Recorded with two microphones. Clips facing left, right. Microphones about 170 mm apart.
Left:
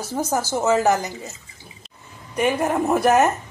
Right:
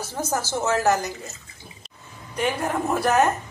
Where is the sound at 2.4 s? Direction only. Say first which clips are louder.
Left 4 dB; 20° left (ahead or behind).